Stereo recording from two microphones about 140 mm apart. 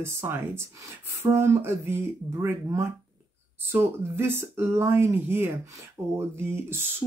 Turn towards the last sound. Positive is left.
turn(degrees=-15)  # may be behind; listen again after turning